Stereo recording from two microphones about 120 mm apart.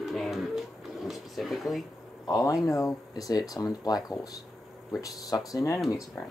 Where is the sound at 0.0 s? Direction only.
Centre (ahead or behind).